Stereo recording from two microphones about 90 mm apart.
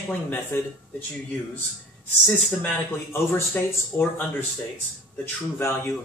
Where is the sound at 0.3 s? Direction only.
20° left (ahead or behind).